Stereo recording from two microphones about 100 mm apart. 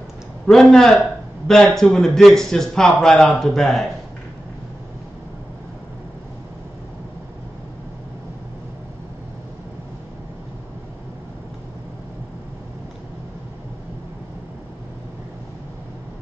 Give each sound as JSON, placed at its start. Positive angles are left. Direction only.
{"t": 0.5, "sound": "a man's voice", "side_deg": 5}